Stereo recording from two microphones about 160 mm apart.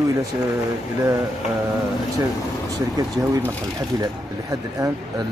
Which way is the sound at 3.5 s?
25° right (ahead or behind).